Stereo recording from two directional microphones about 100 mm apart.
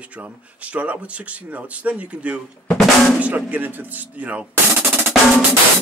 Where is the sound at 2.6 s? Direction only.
5° left (ahead or behind).